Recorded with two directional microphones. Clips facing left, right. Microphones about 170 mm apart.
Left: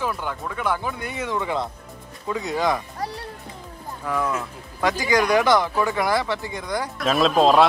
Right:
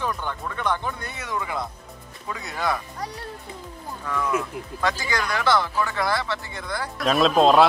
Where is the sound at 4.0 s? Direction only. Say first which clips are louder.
Left 1 dB; 10° left (ahead or behind).